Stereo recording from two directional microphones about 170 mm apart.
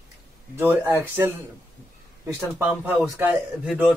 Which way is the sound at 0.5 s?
15° right (ahead or behind).